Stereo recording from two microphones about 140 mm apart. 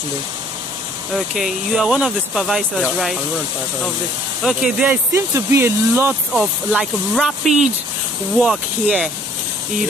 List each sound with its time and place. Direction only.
1.1 s speech: centre (ahead or behind)
4.4 s speech: 5° right (ahead or behind)
5.1 s speech: 20° right (ahead or behind)
6.3 s speech: 5° right (ahead or behind)